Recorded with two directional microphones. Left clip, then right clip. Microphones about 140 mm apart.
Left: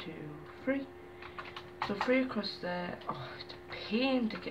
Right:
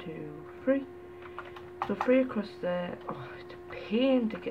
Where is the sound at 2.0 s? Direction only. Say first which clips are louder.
Right 6 dB; 35° right (ahead or behind).